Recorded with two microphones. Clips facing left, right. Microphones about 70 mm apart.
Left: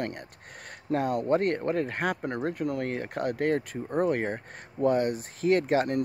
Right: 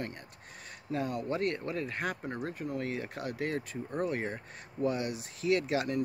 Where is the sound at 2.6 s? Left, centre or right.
Left.